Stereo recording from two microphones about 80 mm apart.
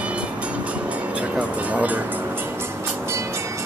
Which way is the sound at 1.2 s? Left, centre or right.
Centre.